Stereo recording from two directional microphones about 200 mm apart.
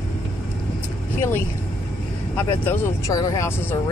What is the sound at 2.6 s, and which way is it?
Speech, 15° left (ahead or behind).